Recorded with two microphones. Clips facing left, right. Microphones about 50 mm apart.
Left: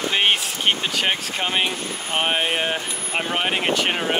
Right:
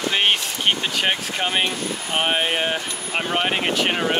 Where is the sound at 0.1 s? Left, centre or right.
Centre.